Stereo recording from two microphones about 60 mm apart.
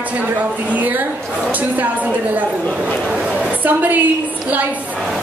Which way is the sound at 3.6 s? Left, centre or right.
Right.